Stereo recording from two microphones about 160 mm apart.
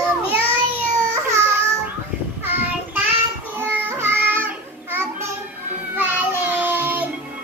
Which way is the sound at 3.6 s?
15° right (ahead or behind).